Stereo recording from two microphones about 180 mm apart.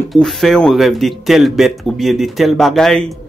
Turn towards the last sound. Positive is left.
turn(degrees=5)  # may be behind; listen again after turning